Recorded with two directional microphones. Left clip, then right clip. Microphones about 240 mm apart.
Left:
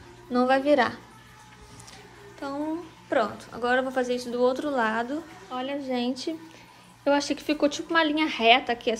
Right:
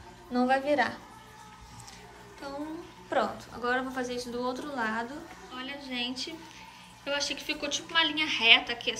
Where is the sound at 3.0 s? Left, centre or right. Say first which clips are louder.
Left 3 dB; centre.